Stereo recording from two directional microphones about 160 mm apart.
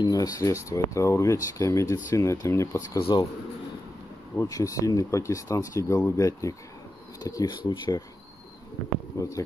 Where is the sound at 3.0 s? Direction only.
30° left (ahead or behind).